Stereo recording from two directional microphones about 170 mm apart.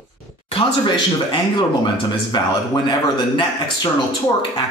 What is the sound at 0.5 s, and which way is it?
A man's voice, 25° left (ahead or behind).